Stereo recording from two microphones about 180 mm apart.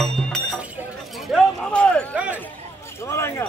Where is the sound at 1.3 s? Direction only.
5° left (ahead or behind).